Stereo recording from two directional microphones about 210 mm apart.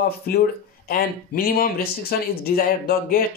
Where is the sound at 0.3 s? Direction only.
45° left (ahead or behind).